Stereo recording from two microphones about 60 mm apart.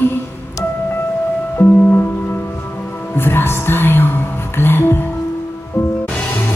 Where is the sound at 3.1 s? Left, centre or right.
Left.